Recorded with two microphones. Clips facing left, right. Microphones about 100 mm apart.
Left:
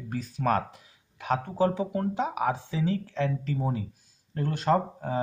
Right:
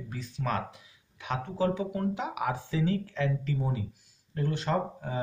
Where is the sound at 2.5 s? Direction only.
25° left (ahead or behind).